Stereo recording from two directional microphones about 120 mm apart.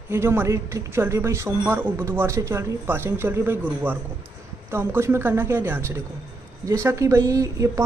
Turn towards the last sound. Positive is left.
turn(degrees=-25)  # may be behind; listen again after turning